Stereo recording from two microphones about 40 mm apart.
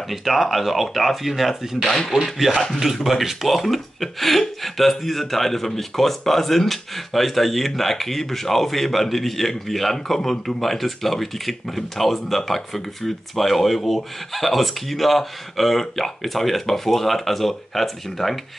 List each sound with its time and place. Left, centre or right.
0.1 s speech: centre
1.8 s speech: centre
2.2 s speech: centre